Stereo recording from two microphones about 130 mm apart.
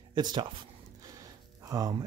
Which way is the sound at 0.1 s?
35° right (ahead or behind).